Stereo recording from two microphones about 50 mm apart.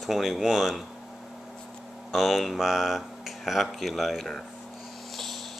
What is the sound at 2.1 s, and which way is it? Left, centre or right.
Speech, centre.